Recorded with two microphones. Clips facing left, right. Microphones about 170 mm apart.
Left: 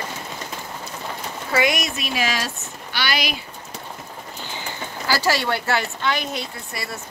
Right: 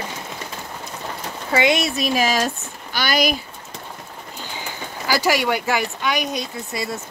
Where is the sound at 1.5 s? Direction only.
25° right (ahead or behind); by 3.3 s 45° right (ahead or behind).